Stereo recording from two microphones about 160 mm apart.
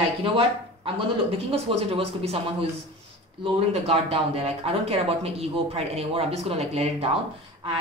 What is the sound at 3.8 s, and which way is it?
Speech, 40° right (ahead or behind).